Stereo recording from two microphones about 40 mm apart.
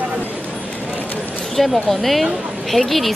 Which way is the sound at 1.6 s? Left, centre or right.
Centre.